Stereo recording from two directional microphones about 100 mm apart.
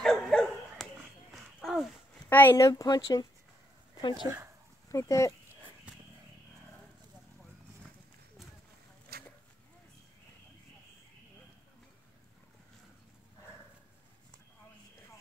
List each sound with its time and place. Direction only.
0.0 s bow-wow: 5° left (ahead or behind)
1.3 s a sound: centre (ahead or behind)
2.2 s a sound: 20° left (ahead or behind)
2.5 s speech: 35° left (ahead or behind)
4.3 s speech: 35° right (ahead or behind)
4.8 s speech: 30° left (ahead or behind)